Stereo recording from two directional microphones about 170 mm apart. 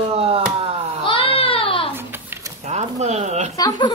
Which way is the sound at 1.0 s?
30° left (ahead or behind).